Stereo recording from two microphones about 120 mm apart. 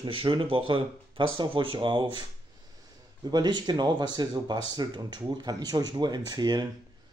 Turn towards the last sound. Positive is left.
turn(degrees=-35)  # may be behind; listen again after turning